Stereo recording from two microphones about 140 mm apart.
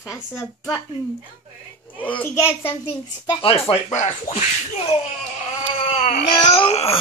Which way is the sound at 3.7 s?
55° left (ahead or behind).